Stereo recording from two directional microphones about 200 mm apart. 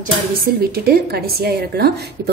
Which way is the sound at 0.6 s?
50° right (ahead or behind).